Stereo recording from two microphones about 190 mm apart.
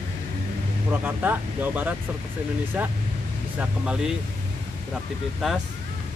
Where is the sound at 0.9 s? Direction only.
10° right (ahead or behind).